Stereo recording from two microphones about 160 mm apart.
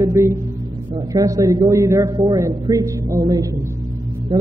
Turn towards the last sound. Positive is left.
turn(degrees=-20)  # may be behind; listen again after turning